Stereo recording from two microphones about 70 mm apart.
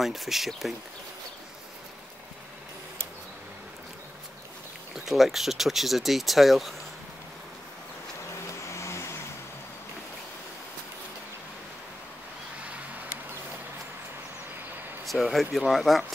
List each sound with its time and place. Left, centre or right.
0.0 s speech: centre
4.9 s speech: centre
8.6 s vehicle: left
15.0 s speech: centre